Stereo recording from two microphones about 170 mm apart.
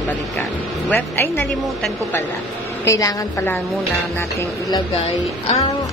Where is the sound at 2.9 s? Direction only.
20° left (ahead or behind).